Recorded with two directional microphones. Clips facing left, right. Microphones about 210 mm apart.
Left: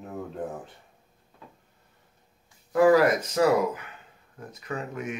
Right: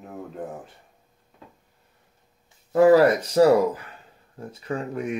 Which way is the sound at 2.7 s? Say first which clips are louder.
Right 4 dB; 30° right (ahead or behind).